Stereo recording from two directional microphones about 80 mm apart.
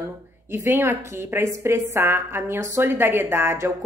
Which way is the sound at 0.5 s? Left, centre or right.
Right.